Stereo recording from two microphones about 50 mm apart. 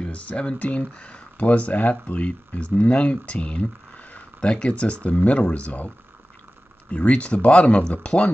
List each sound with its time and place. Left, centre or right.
0.0 s speech: left
6.9 s speech: left